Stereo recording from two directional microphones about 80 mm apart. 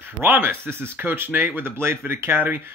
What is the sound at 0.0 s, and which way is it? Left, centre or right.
Speech, right.